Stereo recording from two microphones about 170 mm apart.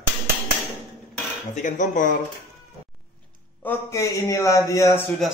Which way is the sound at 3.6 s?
15° left (ahead or behind).